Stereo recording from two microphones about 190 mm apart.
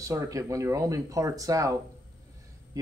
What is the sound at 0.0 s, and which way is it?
Speech, 15° right (ahead or behind).